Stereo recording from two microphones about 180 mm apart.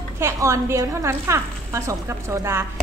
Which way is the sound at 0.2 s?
15° right (ahead or behind).